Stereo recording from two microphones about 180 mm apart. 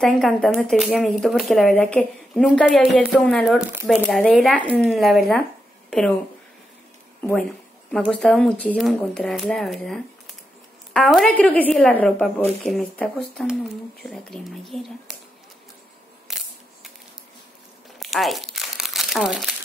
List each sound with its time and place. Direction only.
0.0 s speech: 5° left (ahead or behind)
4.0 s speech: 5° left (ahead or behind)
5.9 s a sound: 5° left (ahead or behind)
7.2 s a sound: 5° left (ahead or behind)
8.1 s speech: 5° left (ahead or behind)
16.3 s camera: centre (ahead or behind)
17.9 s crumpling: centre (ahead or behind)